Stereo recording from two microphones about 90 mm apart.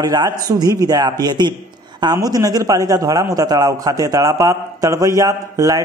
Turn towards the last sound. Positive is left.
turn(degrees=-35)  # may be behind; listen again after turning